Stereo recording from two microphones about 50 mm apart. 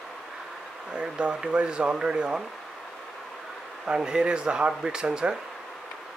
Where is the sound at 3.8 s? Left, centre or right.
Centre.